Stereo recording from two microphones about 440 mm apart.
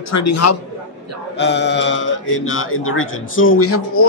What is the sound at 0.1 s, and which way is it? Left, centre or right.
Speech, left.